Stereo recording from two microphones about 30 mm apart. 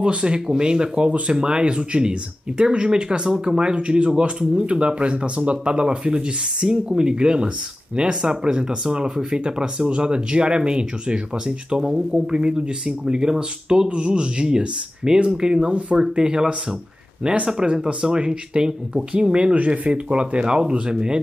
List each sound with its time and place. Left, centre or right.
0.0 s speech: right
5.7 s speech: right
19.5 s speech: right